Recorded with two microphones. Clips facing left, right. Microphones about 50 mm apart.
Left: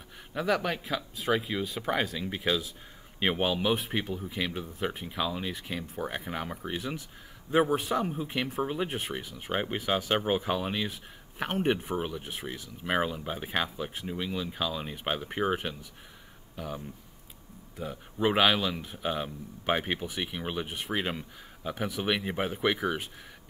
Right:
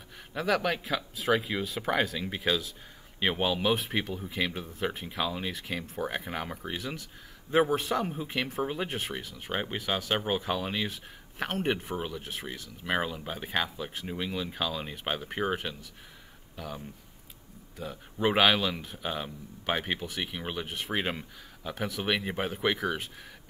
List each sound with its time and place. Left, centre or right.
0.3 s speech: centre
14.0 s speech: centre
16.5 s speech: centre
18.2 s speech: centre
20.9 s speech: centre
21.6 s speech: centre
22.0 s speech: centre